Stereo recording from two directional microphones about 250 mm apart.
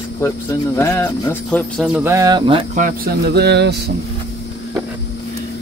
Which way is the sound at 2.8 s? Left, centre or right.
Right.